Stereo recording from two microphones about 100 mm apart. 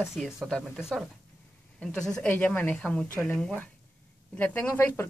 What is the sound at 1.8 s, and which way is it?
Speech, 10° left (ahead or behind).